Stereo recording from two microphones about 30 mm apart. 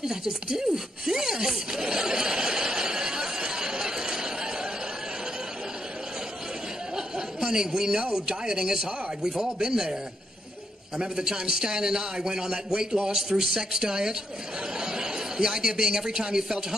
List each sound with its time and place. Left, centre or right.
0.0 s speech: right
1.7 s chatter: right
7.2 s a sound: right
8.1 s speech: right
11.2 s speech: right